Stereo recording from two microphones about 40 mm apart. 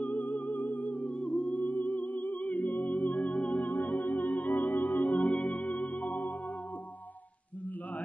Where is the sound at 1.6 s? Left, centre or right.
Left.